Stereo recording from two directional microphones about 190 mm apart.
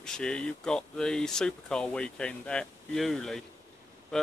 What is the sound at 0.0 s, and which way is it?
Speech, 5° left (ahead or behind).